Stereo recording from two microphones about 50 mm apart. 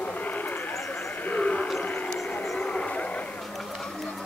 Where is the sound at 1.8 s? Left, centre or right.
Left.